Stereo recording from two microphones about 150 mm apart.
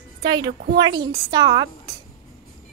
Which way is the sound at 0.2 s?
30° right (ahead or behind).